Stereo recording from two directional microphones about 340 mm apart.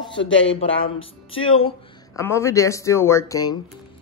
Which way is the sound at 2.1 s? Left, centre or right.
Centre.